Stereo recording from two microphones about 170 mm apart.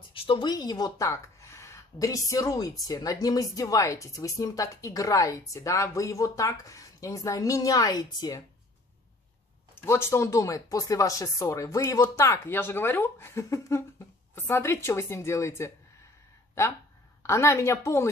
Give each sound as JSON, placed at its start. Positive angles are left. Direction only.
{"t": 0.1, "sound": "speech", "side_deg": 30}
{"t": 9.8, "sound": "speech", "side_deg": 15}